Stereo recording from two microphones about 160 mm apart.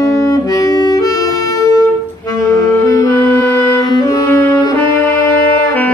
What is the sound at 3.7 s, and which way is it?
Saxophone, 25° left (ahead or behind).